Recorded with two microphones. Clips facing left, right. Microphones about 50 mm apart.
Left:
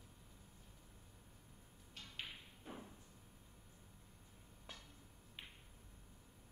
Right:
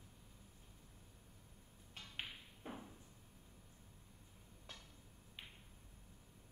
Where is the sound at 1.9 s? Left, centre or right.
Right.